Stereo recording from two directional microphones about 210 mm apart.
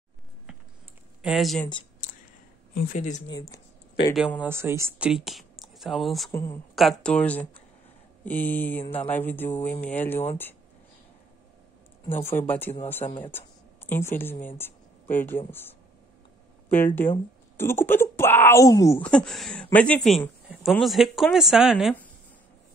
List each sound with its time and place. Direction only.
1.2 s speech: centre (ahead or behind)
2.7 s speech: 40° left (ahead or behind)
4.1 s speech: centre (ahead or behind)
6.3 s speech: 10° left (ahead or behind)
6.7 s speech: centre (ahead or behind)
12.1 s speech: 10° left (ahead or behind)
16.7 s speech: 10° left (ahead or behind)